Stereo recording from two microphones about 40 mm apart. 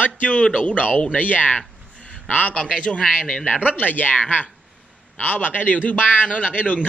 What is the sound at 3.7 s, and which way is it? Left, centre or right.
Speech, left.